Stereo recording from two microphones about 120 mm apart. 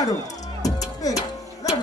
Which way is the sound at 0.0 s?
30° left (ahead or behind).